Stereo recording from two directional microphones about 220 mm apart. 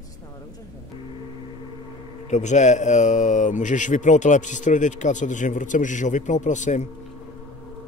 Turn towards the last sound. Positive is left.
turn(degrees=35)  # may be behind; listen again after turning